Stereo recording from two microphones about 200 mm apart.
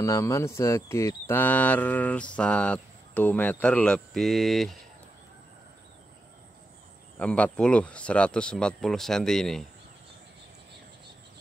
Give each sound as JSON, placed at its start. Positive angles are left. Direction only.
{"t": 0.0, "sound": "speech", "side_deg": 15}
{"t": 7.2, "sound": "speech", "side_deg": 5}